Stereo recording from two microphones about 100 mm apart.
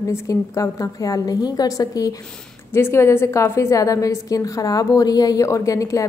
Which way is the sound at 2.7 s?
25° left (ahead or behind).